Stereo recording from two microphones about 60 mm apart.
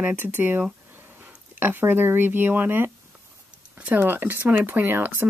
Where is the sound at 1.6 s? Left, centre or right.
Right.